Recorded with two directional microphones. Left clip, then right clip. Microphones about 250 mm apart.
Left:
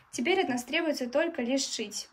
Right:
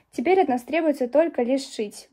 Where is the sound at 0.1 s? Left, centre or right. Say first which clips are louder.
Right 8 dB; centre.